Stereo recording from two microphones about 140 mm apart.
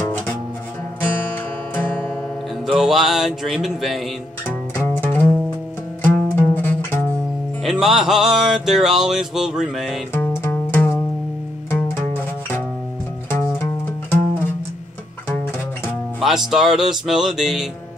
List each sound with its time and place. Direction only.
1.8 s music: 10° left (ahead or behind)
2.6 s mantra: centre (ahead or behind)
4.7 s music: 15° left (ahead or behind)
7.6 s music: centre (ahead or behind)
10.1 s music: 15° left (ahead or behind)
16.2 s music: centre (ahead or behind)